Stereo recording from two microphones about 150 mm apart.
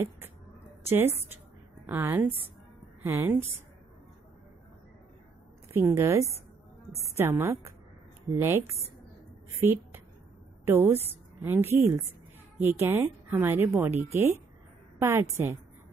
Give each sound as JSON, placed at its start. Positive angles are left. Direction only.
{"t": 0.8, "sound": "a woman's voice", "side_deg": -15}
{"t": 5.7, "sound": "a woman's voice", "side_deg": -15}